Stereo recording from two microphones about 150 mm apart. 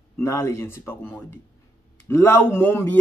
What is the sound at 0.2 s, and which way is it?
A man's voice, 20° left (ahead or behind).